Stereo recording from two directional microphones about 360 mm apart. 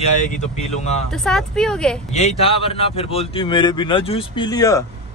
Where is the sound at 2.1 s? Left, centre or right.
Centre.